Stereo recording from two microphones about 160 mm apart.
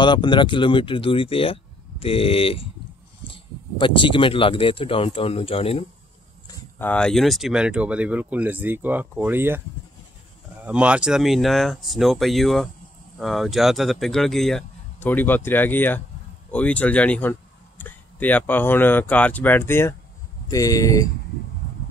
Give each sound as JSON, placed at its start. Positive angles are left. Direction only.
{"t": 0.0, "sound": "speech", "side_deg": 30}
{"t": 6.8, "sound": "speech", "side_deg": 10}
{"t": 10.6, "sound": "speech", "side_deg": -10}